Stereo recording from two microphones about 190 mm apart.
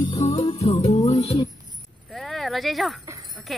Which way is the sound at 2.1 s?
Centre (ahead or behind).